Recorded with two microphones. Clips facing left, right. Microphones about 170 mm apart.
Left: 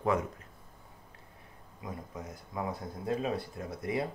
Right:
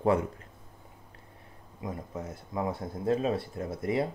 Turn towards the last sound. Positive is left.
turn(degrees=-25)  # may be behind; listen again after turning